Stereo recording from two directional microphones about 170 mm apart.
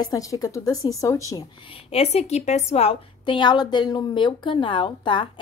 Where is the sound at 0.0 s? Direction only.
20° left (ahead or behind).